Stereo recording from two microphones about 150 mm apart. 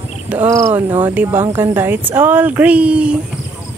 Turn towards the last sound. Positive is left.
turn(degrees=-10)  # may be behind; listen again after turning